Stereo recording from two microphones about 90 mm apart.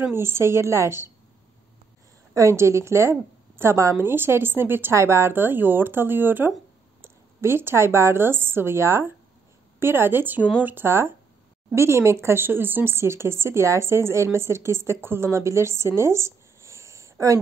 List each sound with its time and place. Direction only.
0.1 s a woman's voice: 30° right (ahead or behind)
2.3 s a woman's voice: 30° right (ahead or behind)